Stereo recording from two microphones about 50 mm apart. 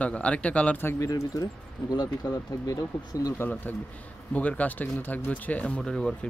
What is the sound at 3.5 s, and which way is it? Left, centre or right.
Speech, left.